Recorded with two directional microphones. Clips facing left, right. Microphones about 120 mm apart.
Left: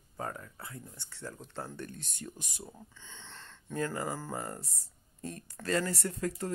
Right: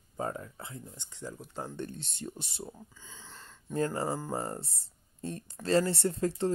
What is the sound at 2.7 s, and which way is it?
Speech, 10° right (ahead or behind).